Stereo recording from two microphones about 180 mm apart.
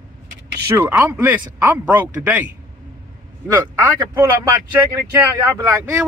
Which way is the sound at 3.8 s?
15° right (ahead or behind).